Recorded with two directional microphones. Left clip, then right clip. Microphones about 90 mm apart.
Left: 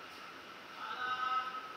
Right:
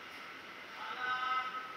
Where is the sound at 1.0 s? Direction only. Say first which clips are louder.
Right 1 dB; 35° right (ahead or behind).